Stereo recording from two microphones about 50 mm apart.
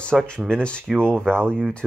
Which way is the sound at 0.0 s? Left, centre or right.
Left.